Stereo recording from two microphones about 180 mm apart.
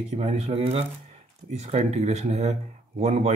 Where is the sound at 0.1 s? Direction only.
35° right (ahead or behind).